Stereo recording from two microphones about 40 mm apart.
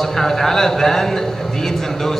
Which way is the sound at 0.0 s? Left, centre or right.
Centre.